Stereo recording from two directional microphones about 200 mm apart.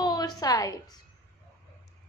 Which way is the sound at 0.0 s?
20° left (ahead or behind).